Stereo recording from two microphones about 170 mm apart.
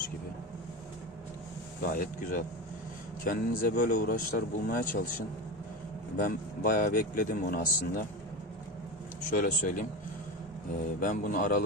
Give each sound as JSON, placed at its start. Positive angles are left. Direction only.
{"t": 1.9, "sound": "speech", "side_deg": 55}
{"t": 6.1, "sound": "speech", "side_deg": 55}
{"t": 9.3, "sound": "speech", "side_deg": 55}
{"t": 11.0, "sound": "speech", "side_deg": 55}